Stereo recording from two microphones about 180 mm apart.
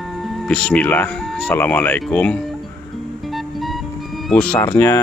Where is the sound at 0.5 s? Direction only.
5° left (ahead or behind).